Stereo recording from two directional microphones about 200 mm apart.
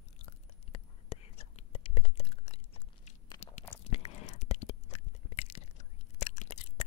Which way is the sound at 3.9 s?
30° left (ahead or behind).